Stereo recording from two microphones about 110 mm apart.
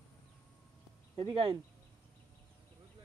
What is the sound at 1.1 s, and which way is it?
Speech, 50° right (ahead or behind).